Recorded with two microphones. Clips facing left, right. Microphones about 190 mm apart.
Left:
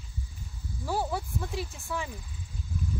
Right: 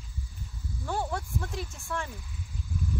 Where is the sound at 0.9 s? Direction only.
5° left (ahead or behind).